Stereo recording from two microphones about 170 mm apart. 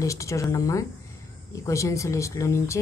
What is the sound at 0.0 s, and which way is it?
A woman's voice, 20° left (ahead or behind).